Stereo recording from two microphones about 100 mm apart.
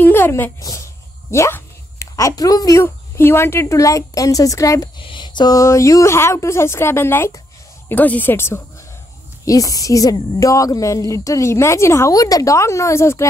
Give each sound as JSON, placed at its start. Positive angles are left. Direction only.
{"t": 0.0, "sound": "a sound", "side_deg": 20}
{"t": 0.6, "sound": "speech", "side_deg": 35}
{"t": 2.8, "sound": "a woman's voice", "side_deg": 25}
{"t": 4.9, "sound": "speech", "side_deg": 50}
{"t": 9.4, "sound": "a woman's voice", "side_deg": 35}